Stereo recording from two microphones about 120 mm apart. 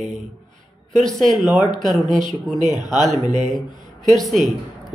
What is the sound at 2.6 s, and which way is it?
Speech, 35° left (ahead or behind).